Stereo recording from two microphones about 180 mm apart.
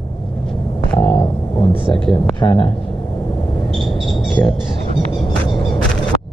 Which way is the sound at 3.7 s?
Centre (ahead or behind).